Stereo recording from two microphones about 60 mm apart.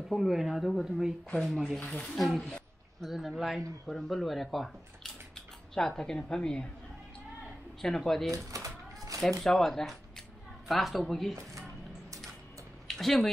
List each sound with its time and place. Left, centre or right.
0.1 s a woman's voice: centre
7.8 s speech: centre
8.5 s a sound: right
9.4 s speech: centre
12.8 s speech: centre